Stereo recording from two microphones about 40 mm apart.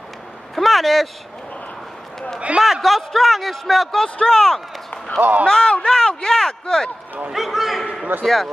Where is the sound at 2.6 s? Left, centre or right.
Centre.